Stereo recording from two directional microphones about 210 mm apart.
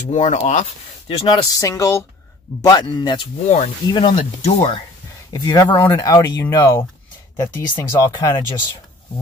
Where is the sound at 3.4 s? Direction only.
35° left (ahead or behind).